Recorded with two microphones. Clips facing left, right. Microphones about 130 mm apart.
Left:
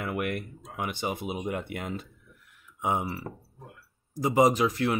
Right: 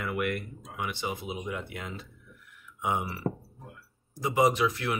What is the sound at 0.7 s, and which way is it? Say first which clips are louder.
Speech: left 2 dB; 50° left (ahead or behind).